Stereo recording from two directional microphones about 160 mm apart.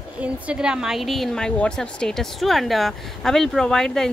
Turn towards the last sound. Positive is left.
turn(degrees=5)  # may be behind; listen again after turning